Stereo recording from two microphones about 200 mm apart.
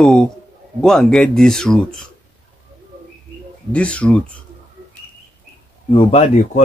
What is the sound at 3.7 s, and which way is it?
Speech, 5° left (ahead or behind).